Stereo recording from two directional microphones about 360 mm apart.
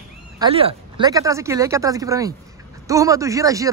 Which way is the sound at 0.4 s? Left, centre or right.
Centre.